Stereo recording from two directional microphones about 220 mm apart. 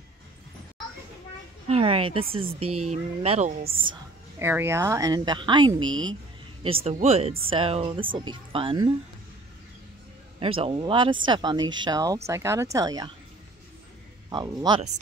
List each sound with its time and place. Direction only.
1.7 s a woman's voice: 25° right (ahead or behind)
2.6 s speech: 90° right
2.9 s speech: 30° right (ahead or behind)
3.6 s speech: 40° right (ahead or behind)
4.4 s a woman's voice: 10° right (ahead or behind)
5.8 s speech: 65° right (ahead or behind)
6.6 s a woman's voice: 25° right (ahead or behind)
10.4 s a woman's voice: 25° right (ahead or behind)
14.3 s a woman's voice: 20° right (ahead or behind)